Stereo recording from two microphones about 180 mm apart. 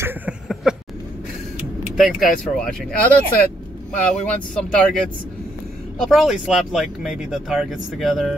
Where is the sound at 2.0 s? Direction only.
Centre (ahead or behind).